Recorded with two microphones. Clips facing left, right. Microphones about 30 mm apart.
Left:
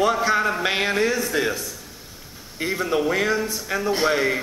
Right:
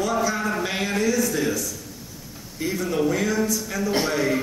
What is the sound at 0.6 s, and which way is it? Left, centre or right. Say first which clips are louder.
A man's voice: left 3 dB; left.